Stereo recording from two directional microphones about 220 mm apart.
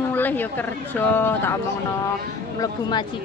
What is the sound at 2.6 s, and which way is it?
Speech, 20° left (ahead or behind).